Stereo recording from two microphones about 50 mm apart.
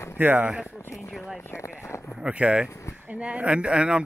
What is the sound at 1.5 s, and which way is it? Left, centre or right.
Speech, left.